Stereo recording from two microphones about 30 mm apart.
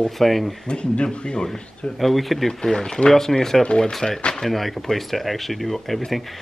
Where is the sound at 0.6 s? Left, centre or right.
Left.